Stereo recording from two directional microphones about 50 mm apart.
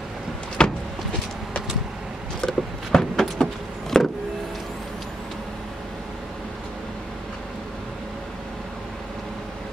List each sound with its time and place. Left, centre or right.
0.6 s vehicle: centre
2.4 s a sound: centre
3.9 s power windows: centre